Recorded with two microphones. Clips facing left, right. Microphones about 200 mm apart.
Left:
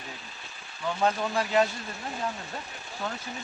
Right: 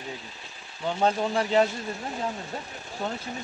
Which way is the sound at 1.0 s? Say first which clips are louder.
Right 3 dB; 25° right (ahead or behind).